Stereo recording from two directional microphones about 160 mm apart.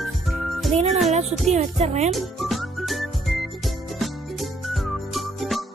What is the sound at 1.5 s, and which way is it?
Speech, 45° right (ahead or behind).